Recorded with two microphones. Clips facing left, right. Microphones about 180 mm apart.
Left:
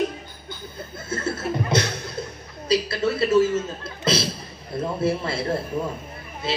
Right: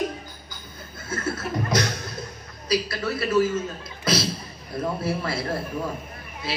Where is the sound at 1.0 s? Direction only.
25° left (ahead or behind).